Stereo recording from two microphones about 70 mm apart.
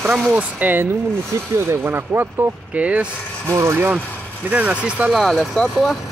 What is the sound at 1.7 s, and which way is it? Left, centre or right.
Speech, right.